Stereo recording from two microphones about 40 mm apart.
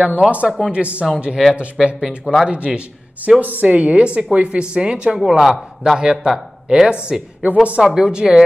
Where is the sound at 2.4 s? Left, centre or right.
Right.